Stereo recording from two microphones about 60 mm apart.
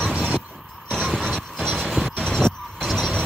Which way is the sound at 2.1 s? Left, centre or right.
Centre.